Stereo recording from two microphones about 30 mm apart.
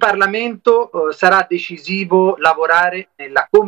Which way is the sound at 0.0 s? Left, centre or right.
Centre.